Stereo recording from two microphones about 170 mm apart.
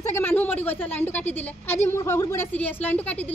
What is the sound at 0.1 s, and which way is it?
A woman's voice, 10° left (ahead or behind).